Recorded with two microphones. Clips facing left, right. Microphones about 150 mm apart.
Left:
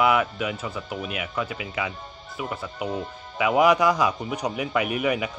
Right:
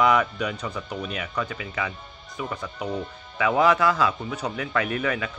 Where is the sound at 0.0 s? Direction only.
5° left (ahead or behind).